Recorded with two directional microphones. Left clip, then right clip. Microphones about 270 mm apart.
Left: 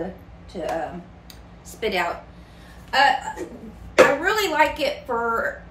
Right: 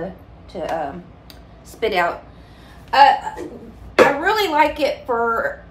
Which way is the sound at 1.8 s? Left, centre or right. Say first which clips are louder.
Right 5 dB; centre.